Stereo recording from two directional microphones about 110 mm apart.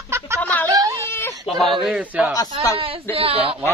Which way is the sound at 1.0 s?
20° left (ahead or behind).